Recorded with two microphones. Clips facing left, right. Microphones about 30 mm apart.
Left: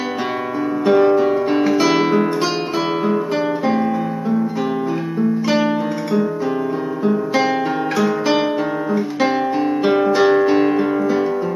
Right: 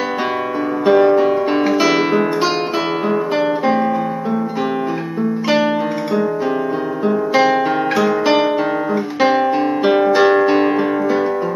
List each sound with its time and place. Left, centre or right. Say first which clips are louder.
0.8 s guitar: right 2 dB; centre
7.1 s guitar: right 3 dB; centre